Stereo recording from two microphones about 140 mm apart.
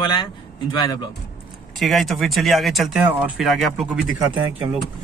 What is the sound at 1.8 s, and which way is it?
Speech, centre (ahead or behind).